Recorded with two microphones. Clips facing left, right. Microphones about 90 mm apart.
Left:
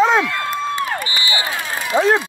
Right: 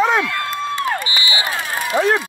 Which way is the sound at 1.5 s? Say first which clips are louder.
Left 1 dB; 20° left (ahead or behind).